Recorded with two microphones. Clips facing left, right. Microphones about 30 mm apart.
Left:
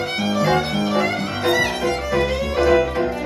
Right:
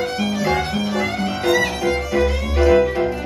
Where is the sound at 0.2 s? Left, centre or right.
Left.